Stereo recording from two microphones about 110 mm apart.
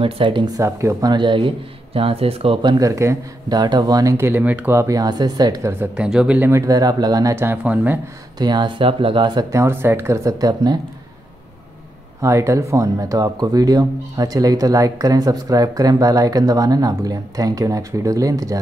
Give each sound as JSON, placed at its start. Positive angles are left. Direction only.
{"t": 0.0, "sound": "speech", "side_deg": -50}
{"t": 0.6, "sound": "speech", "side_deg": -25}
{"t": 1.1, "sound": "speech", "side_deg": -50}
{"t": 2.0, "sound": "speech", "side_deg": -60}
{"t": 2.8, "sound": "speech", "side_deg": -25}
{"t": 3.4, "sound": "speech", "side_deg": -40}
{"t": 5.6, "sound": "speech", "side_deg": -20}
{"t": 5.9, "sound": "speech", "side_deg": -10}
{"t": 6.6, "sound": "speech", "side_deg": -35}
{"t": 7.3, "sound": "speech", "side_deg": -15}
{"t": 8.4, "sound": "speech", "side_deg": -40}
{"t": 9.5, "sound": "speech", "side_deg": -25}
{"t": 12.2, "sound": "speech", "side_deg": -25}